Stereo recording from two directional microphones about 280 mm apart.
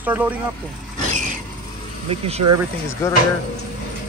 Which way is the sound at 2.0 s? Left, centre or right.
Right.